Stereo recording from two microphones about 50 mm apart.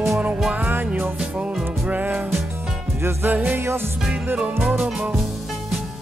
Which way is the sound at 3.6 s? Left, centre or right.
Right.